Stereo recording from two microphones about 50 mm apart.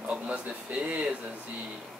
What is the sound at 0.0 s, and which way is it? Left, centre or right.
Speech, right.